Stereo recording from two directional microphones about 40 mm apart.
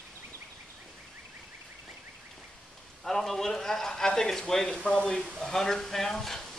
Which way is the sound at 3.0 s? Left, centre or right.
Centre.